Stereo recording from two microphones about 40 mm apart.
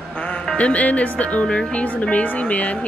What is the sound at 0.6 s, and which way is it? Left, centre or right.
Speech, left.